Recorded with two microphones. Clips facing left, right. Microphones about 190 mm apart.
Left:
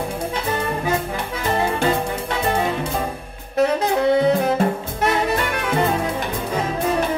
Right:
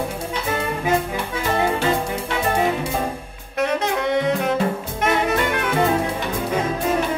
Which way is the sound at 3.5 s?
35° left (ahead or behind).